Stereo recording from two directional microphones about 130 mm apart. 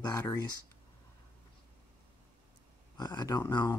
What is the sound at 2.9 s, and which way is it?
Speech, 30° left (ahead or behind).